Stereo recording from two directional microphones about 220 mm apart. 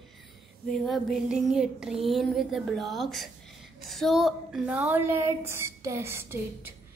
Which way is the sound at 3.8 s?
Centre (ahead or behind).